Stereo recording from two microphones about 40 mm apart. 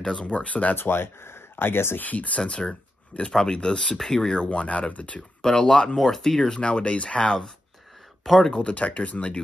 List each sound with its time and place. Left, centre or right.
0.0 s speech: left
0.7 s speech: left
2.0 s speech: left
2.6 s speech: left
5.4 s speech: centre
6.5 s speech: left; by 8.5 s centre
8.5 s speech: left